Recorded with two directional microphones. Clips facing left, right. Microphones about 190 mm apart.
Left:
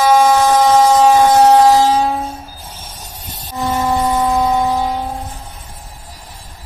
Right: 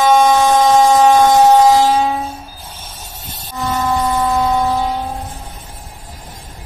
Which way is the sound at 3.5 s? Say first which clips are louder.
Left 1 dB; 15° left (ahead or behind).